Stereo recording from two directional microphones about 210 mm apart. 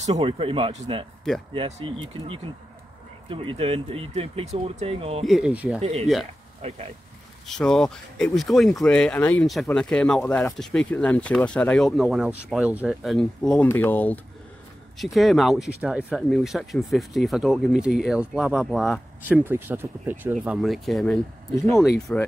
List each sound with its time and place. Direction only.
0.1 s speech: 25° right (ahead or behind)
5.2 s speech: centre (ahead or behind)
5.8 s speech: 30° right (ahead or behind)
7.4 s speech: centre (ahead or behind)